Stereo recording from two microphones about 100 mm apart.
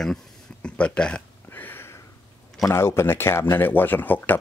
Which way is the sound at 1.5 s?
20° left (ahead or behind).